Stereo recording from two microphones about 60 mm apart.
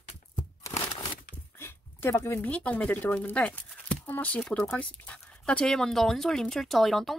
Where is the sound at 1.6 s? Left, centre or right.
Left.